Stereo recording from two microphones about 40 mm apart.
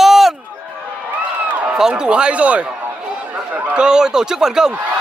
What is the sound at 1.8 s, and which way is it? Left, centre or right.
Speech, centre.